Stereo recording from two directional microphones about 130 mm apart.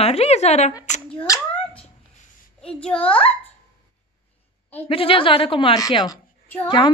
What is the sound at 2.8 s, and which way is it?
Speech, 10° left (ahead or behind).